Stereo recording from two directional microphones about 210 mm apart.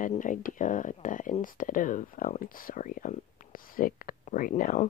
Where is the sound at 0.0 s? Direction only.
40° left (ahead or behind).